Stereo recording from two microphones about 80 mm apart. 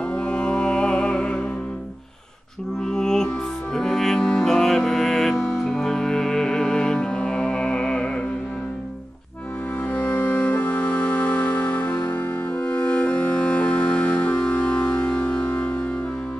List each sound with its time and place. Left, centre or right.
0.1 s music: centre
2.8 s music: centre
9.8 s music: centre